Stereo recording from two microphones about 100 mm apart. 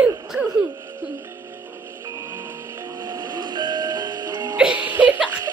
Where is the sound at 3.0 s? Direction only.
40° right (ahead or behind).